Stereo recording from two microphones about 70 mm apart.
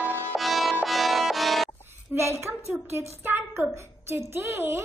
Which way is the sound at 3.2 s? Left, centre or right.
Right.